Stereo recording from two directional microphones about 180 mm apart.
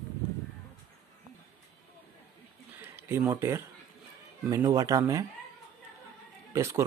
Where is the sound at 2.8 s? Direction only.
15° right (ahead or behind).